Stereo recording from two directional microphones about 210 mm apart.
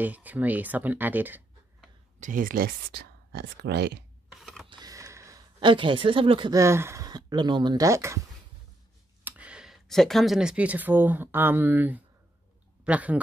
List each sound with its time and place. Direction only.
0.0 s speech: 10° right (ahead or behind)
2.1 s speech: 40° right (ahead or behind)
4.3 s camera: centre (ahead or behind)
4.6 s speech: 20° right (ahead or behind)
9.2 s speech: 5° right (ahead or behind)